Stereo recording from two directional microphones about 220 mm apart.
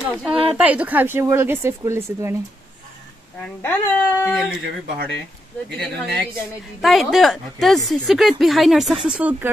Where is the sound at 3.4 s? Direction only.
10° left (ahead or behind).